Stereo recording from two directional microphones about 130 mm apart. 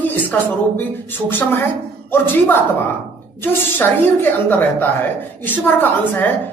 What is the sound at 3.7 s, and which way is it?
Speech, 15° left (ahead or behind).